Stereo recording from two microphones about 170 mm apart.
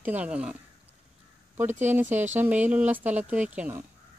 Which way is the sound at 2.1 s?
45° right (ahead or behind).